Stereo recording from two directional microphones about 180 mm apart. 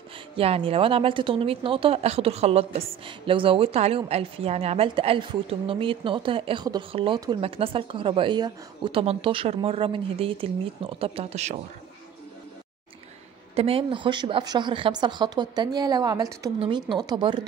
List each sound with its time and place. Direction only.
0.4 s a woman's voice: 30° right (ahead or behind)
13.6 s a woman's voice: 30° right (ahead or behind)